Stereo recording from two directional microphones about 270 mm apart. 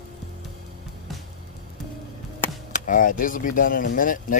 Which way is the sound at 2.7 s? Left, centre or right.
Left.